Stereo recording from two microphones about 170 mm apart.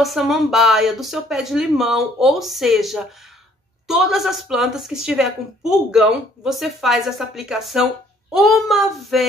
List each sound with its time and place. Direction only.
0.0 s a woman's voice: centre (ahead or behind)